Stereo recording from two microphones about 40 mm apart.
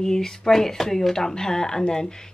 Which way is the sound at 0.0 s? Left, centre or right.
Centre.